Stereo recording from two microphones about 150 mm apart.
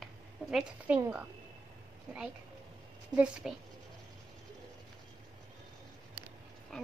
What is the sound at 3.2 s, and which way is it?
Speech, 5° right (ahead or behind).